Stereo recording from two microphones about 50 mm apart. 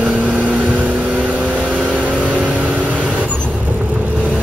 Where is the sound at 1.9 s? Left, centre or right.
Right.